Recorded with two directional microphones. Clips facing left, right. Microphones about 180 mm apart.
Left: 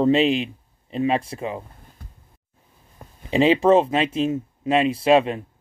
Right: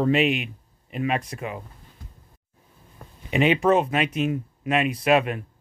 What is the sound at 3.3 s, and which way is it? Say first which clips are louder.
Speech: left 4 dB; 30° left (ahead or behind).